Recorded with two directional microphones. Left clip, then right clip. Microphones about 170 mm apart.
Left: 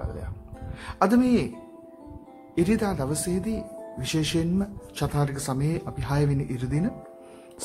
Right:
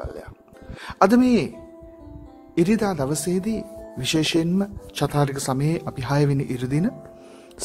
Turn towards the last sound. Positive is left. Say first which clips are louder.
# right 5 dB
turn(degrees=-45)  # may be behind; listen again after turning